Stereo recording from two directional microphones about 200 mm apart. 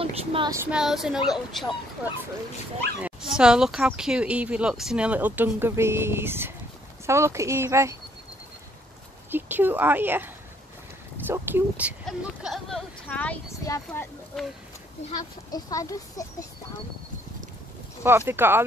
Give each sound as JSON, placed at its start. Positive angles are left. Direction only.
{"t": 0.0, "sound": "child singing", "side_deg": -25}
{"t": 0.5, "sound": "speech", "side_deg": -10}
{"t": 3.0, "sound": "speech", "side_deg": -5}
{"t": 9.3, "sound": "speech", "side_deg": -10}
{"t": 15.5, "sound": "a child's voice", "side_deg": 15}
{"t": 18.0, "sound": "speech", "side_deg": -10}